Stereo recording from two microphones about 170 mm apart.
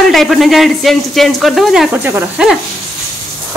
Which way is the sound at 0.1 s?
Centre (ahead or behind).